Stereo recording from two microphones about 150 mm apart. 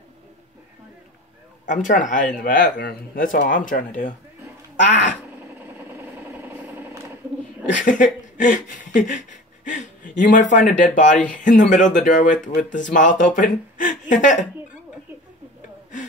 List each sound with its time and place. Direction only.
1.7 s speech: 55° left (ahead or behind)
4.8 s cat: 55° left (ahead or behind)
5.9 s vehicle: 15° right (ahead or behind)
7.7 s a sound: 60° left (ahead or behind)
11.2 s speech: 60° left (ahead or behind)